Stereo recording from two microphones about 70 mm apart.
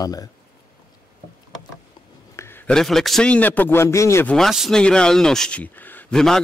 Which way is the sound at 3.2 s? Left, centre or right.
Left.